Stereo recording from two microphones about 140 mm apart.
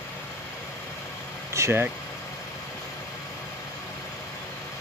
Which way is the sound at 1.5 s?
20° right (ahead or behind).